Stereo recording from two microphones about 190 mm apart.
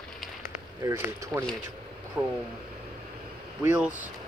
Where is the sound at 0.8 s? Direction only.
15° right (ahead or behind).